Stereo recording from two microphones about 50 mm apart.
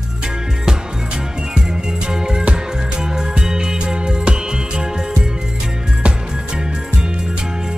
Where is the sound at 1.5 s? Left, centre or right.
Centre.